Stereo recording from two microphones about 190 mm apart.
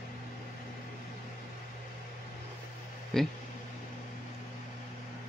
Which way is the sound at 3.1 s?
Centre (ahead or behind).